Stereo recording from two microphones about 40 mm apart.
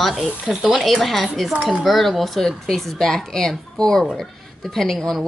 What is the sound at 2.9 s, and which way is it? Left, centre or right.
Speech, centre.